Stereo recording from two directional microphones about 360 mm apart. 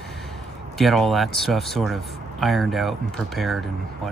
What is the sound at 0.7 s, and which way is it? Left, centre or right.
Speech, centre.